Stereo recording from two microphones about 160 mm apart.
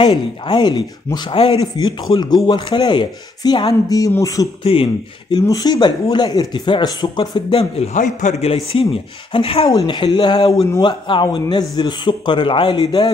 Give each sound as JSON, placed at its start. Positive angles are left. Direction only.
{"t": 0.0, "sound": "speech", "side_deg": 30}
{"t": 4.7, "sound": "speech", "side_deg": 40}
{"t": 5.3, "sound": "speech", "side_deg": 25}
{"t": 9.7, "sound": "speech", "side_deg": 25}